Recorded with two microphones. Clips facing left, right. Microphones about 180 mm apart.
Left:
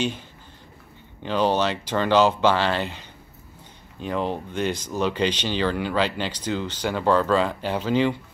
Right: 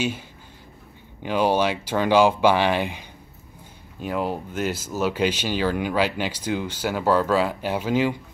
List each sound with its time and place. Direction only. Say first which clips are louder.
1.2 s speech: right 1 dB; 10° right (ahead or behind)